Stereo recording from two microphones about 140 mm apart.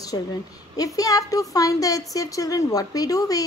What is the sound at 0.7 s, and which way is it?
A woman's voice, 25° left (ahead or behind).